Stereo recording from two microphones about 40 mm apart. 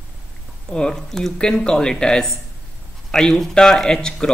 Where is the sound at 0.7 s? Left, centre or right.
Centre.